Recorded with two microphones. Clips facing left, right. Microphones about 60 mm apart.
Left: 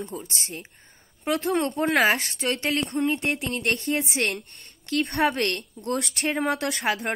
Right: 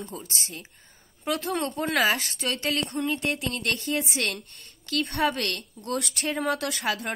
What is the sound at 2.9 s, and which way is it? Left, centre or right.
A woman's voice, left.